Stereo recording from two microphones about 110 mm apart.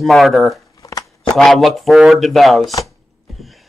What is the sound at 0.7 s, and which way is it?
Shuffling cards, 30° left (ahead or behind).